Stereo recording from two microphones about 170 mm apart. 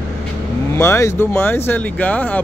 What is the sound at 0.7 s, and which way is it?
Speech, 15° left (ahead or behind).